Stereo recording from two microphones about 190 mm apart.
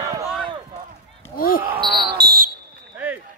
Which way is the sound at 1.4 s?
50° left (ahead or behind).